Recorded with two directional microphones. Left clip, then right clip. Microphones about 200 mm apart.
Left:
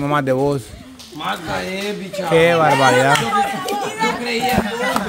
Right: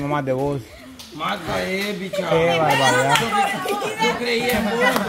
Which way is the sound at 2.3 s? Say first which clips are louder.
Left 5 dB; 30° left (ahead or behind).